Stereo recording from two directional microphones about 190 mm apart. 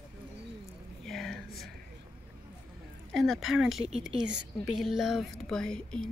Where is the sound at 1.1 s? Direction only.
Centre (ahead or behind).